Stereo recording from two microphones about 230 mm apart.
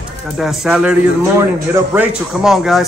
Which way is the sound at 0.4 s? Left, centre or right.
Centre.